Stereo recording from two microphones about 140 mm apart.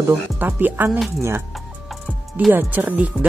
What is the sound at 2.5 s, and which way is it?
Speech, 15° right (ahead or behind).